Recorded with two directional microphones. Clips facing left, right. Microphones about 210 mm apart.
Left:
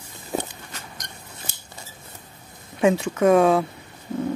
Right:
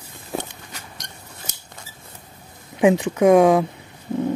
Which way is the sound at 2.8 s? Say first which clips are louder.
Right 3 dB; 15° right (ahead or behind).